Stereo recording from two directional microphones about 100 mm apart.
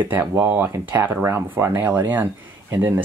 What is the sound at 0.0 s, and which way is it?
Speech, 20° right (ahead or behind).